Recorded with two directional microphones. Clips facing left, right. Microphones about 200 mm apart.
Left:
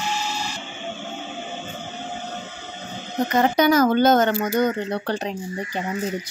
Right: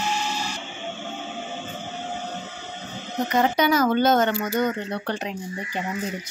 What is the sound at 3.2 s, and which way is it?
Speech, 45° left (ahead or behind).